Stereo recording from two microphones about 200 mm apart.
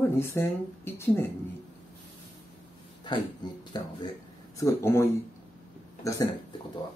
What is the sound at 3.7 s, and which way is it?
Speech, 20° left (ahead or behind).